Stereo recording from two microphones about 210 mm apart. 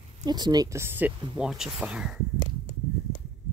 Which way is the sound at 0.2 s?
20° right (ahead or behind).